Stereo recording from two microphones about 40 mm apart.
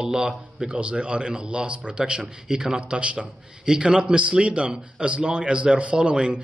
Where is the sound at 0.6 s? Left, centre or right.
Right.